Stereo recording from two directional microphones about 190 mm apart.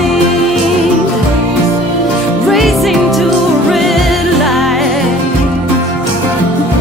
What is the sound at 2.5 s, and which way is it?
Music, centre (ahead or behind).